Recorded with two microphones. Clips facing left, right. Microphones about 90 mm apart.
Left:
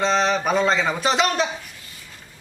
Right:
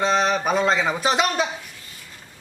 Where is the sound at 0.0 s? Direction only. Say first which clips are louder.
Even; 5° right (ahead or behind).